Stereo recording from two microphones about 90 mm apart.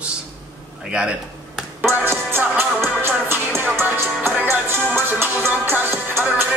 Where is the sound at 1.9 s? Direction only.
25° right (ahead or behind).